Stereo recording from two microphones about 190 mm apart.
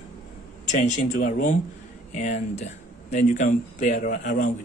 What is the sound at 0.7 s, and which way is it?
Speech, 40° left (ahead or behind).